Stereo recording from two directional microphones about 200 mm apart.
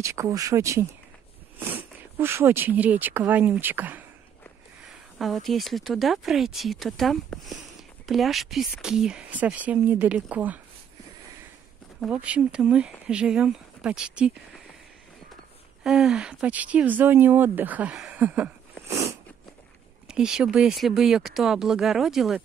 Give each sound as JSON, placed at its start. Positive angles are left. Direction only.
{"t": 0.0, "sound": "speech", "side_deg": -15}
{"t": 12.0, "sound": "speech", "side_deg": -5}
{"t": 15.8, "sound": "speech", "side_deg": 0}
{"t": 20.1, "sound": "speech", "side_deg": -5}